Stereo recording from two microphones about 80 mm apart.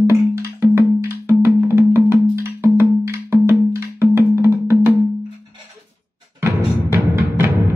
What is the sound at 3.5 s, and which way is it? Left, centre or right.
Music, right.